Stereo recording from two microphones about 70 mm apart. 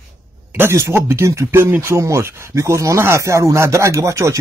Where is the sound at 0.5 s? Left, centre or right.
Right.